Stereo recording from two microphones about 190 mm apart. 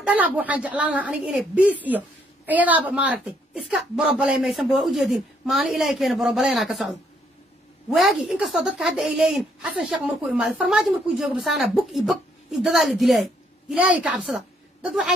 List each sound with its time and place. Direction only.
0.0 s a woman's voice: 10° right (ahead or behind)